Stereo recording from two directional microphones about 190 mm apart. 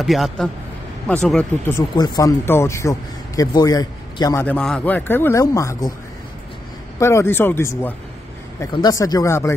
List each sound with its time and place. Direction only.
0.0 s speech: centre (ahead or behind); by 5.9 s 15° left (ahead or behind)
7.0 s speech: 15° left (ahead or behind)